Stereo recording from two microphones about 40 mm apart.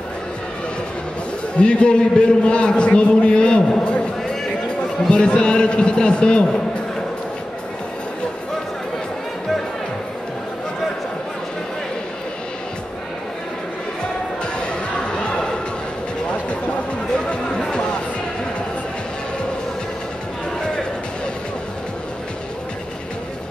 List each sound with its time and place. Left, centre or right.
1.6 s a man's voice: left
5.1 s a man's voice: left
14.4 s basketball bounce: left
17.3 s a sound: left